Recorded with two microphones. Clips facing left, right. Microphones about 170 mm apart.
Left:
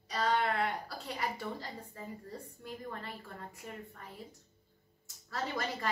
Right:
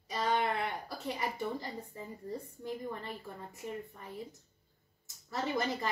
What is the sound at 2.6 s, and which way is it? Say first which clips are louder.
A woman's voice: right 2 dB; 20° right (ahead or behind).